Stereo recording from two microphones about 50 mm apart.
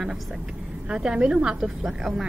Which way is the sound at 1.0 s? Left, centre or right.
Centre.